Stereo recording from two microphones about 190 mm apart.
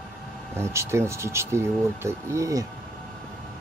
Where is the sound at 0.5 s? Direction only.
15° right (ahead or behind).